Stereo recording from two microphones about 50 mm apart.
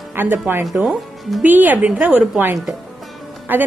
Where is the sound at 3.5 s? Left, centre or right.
Right.